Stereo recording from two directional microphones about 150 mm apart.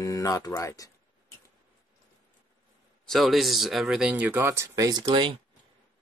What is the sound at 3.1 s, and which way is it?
Speech, centre (ahead or behind).